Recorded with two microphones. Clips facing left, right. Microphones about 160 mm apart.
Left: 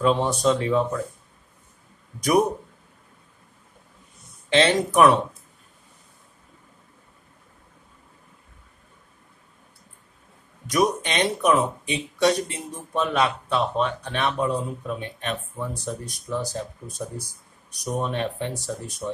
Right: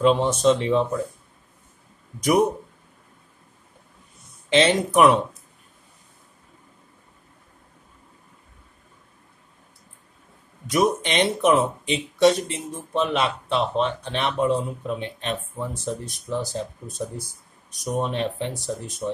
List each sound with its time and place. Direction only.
0.0 s speech: 20° right (ahead or behind)
4.6 s speech: 20° right (ahead or behind)
10.7 s speech: 25° right (ahead or behind)